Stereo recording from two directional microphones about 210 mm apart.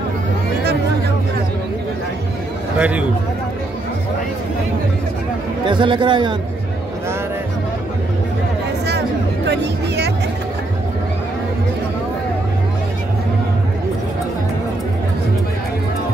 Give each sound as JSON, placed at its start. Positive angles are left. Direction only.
{"t": 2.8, "sound": "a man's voice", "side_deg": -5}
{"t": 5.7, "sound": "speech", "side_deg": -25}
{"t": 9.5, "sound": "music", "side_deg": -55}